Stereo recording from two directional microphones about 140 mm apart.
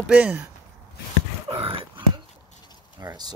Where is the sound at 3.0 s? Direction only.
20° right (ahead or behind).